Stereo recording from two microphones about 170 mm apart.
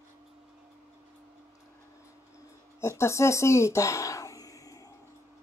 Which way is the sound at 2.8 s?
15° left (ahead or behind).